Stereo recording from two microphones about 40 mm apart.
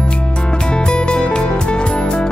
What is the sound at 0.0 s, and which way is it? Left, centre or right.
Music, left.